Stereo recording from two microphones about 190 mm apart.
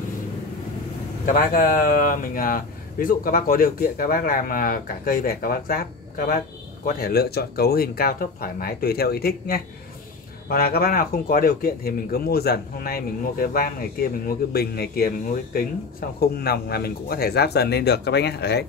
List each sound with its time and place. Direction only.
1.2 s speech: 50° left (ahead or behind)